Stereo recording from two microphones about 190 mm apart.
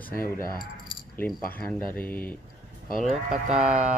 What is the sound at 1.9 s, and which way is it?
Speech, 10° left (ahead or behind).